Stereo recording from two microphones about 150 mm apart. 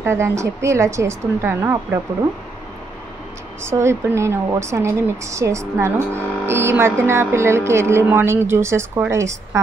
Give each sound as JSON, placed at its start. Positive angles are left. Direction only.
{"t": 0.0, "sound": "speech", "side_deg": -15}
{"t": 3.6, "sound": "a woman's voice", "side_deg": -20}